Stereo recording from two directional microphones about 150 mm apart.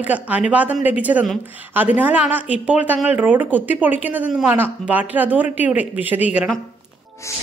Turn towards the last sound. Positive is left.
turn(degrees=20)  # may be behind; listen again after turning